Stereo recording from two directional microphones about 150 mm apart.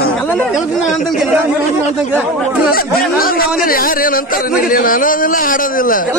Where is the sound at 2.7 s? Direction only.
80° left.